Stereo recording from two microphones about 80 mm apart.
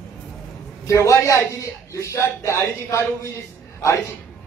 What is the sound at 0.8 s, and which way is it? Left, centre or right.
A man's voice, left.